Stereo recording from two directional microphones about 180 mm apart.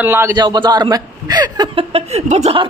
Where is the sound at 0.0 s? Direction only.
10° right (ahead or behind).